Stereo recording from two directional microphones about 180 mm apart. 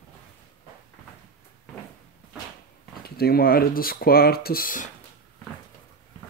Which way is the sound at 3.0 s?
60° left (ahead or behind).